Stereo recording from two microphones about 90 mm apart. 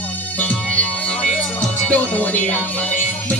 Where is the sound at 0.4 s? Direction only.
15° left (ahead or behind).